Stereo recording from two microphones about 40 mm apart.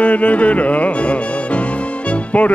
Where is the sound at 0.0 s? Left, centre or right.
Left.